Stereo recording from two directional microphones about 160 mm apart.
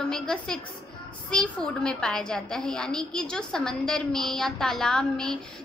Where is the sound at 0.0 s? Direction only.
5° left (ahead or behind).